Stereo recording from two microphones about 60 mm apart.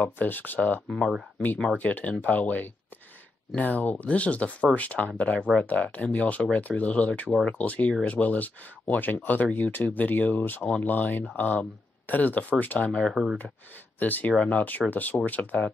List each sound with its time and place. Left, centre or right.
0.0 s speech: left
13.1 s speech: centre
13.9 s speech: left